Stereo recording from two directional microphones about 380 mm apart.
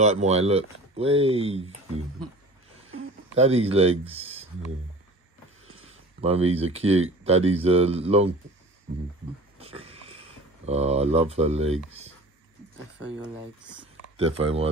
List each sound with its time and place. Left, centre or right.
0.0 s speech: centre
3.3 s speech: centre
5.7 s a sound: centre
6.7 s speech: centre
9.6 s a sound: centre
14.1 s speech: centre